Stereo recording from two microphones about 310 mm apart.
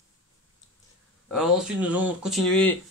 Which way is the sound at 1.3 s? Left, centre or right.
Centre.